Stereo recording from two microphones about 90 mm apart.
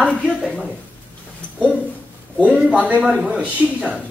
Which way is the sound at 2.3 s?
15° right (ahead or behind).